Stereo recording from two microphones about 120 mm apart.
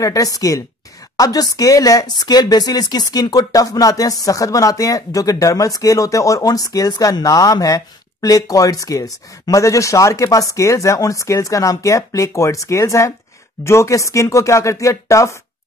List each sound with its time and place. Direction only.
0.0 s speech: 30° left (ahead or behind)